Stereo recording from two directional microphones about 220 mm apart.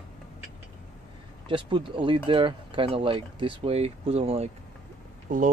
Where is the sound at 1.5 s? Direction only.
25° right (ahead or behind).